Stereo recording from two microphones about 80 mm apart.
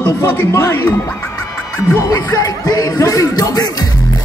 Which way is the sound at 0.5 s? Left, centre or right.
Left.